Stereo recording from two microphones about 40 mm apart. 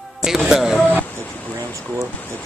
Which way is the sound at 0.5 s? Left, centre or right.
Centre.